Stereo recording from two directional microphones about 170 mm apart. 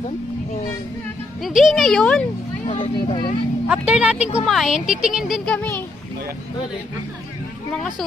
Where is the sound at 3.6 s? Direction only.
5° right (ahead or behind); by 5.9 s 10° left (ahead or behind).